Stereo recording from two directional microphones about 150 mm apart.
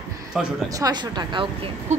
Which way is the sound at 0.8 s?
30° right (ahead or behind).